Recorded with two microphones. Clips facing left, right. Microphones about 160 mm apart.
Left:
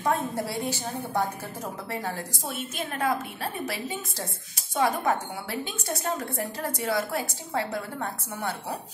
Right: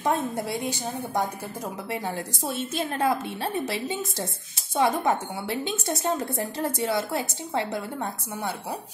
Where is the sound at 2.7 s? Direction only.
30° right (ahead or behind).